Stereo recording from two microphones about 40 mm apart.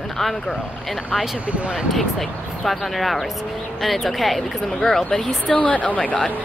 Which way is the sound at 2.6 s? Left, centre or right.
Centre.